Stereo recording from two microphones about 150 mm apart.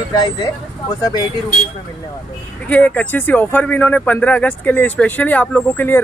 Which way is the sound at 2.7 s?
10° left (ahead or behind).